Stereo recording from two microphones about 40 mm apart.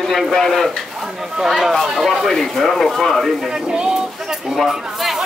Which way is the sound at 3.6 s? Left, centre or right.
Centre.